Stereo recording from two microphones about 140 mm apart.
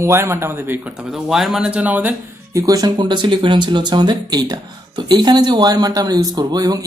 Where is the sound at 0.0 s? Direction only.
20° right (ahead or behind).